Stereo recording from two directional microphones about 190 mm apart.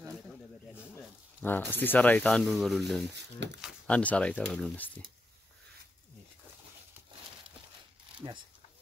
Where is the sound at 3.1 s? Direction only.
65° right (ahead or behind).